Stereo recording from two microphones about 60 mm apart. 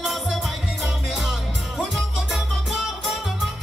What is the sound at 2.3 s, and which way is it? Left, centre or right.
Music, centre.